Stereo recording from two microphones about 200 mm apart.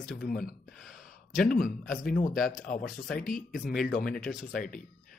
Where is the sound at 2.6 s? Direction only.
40° left (ahead or behind).